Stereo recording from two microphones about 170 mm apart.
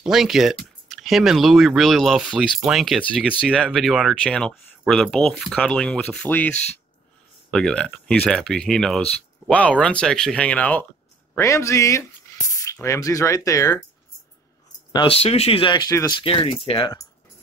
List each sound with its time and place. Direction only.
0.0 s speech: centre (ahead or behind)
7.5 s speech: 5° left (ahead or behind)
14.9 s speech: 30° left (ahead or behind)